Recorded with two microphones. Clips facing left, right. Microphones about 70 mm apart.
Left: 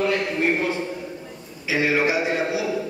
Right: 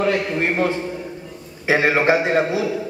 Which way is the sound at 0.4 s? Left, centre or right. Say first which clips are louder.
Right 2 dB; right.